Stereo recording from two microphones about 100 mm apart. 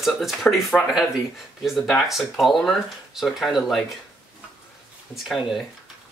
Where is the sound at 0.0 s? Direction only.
Centre (ahead or behind).